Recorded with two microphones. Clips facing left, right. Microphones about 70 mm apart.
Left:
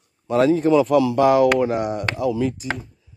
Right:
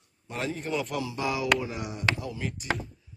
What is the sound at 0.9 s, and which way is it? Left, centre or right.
Speech, left.